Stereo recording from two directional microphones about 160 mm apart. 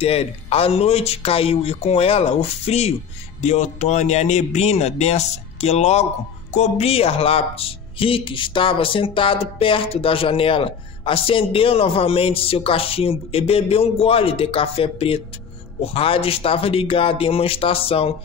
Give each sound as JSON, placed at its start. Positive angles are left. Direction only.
{"t": 0.0, "sound": "speech", "side_deg": 40}